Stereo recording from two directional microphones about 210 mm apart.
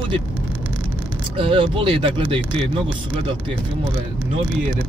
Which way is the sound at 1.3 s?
25° right (ahead or behind).